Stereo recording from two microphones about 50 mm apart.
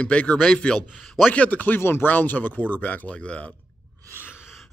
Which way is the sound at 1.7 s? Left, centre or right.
Left.